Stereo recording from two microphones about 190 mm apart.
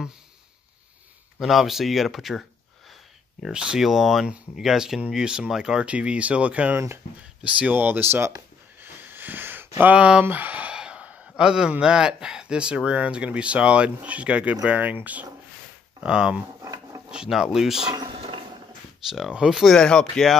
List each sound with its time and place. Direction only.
1.4 s speech: centre (ahead or behind)
3.4 s speech: 5° right (ahead or behind)
8.8 s a sound: 10° right (ahead or behind)
9.8 s speech: 5° right (ahead or behind)
16.6 s filing: 15° right (ahead or behind)
17.1 s speech: 5° right (ahead or behind)
17.9 s a sound: 25° right (ahead or behind)
19.0 s speech: centre (ahead or behind)